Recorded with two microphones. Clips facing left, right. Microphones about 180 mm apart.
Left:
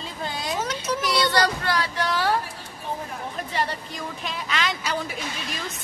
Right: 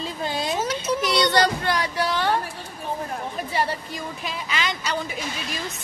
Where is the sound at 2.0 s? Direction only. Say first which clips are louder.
Even; 5° left (ahead or behind).